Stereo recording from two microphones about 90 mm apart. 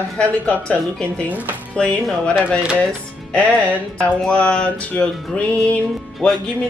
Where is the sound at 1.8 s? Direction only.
10° left (ahead or behind).